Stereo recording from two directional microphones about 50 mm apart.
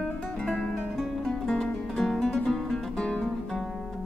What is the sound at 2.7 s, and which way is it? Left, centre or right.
Music, centre.